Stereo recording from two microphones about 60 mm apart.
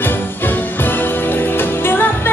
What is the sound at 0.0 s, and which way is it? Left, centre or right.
Music, left.